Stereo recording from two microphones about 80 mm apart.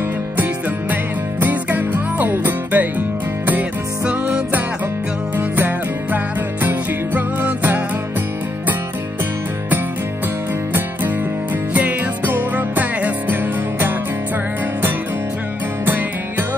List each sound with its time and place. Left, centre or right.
1.4 s music: right
6.1 s music: right
11.7 s music: right
15.8 s music: right